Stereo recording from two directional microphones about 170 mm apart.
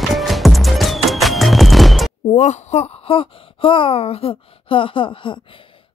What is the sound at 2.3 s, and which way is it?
Speech, 40° left (ahead or behind).